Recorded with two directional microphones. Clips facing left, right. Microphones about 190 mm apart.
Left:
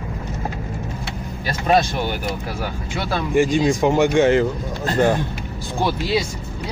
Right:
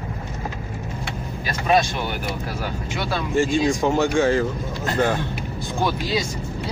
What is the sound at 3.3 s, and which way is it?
Speech, 15° left (ahead or behind).